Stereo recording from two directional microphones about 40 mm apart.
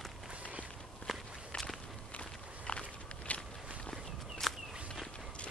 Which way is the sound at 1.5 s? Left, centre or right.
Left.